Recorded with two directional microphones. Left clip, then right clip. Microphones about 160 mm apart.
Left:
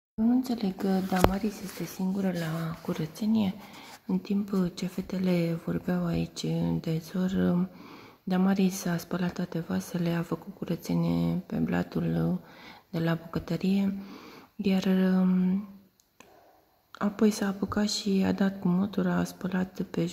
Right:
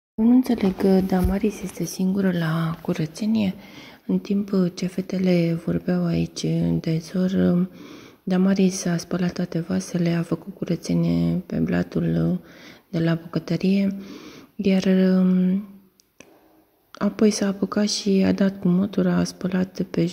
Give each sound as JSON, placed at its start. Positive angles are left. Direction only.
{"t": 0.2, "sound": "speech", "side_deg": -15}
{"t": 2.0, "sound": "speech", "side_deg": -45}
{"t": 2.9, "sound": "speech", "side_deg": -15}
{"t": 17.0, "sound": "speech", "side_deg": -10}